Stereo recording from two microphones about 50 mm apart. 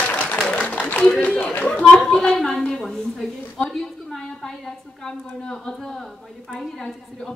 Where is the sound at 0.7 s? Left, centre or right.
Left.